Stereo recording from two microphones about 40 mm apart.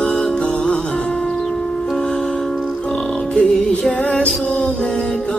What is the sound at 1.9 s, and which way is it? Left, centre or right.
Music, centre.